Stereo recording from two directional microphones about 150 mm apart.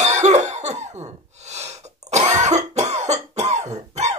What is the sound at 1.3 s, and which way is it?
Snort, 45° right (ahead or behind).